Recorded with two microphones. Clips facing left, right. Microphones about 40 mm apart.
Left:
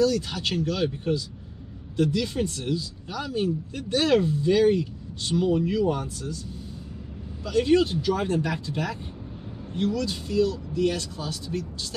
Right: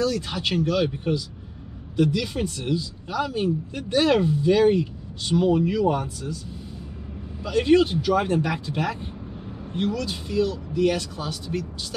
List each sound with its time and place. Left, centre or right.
0.0 s speech: centre
7.4 s speech: centre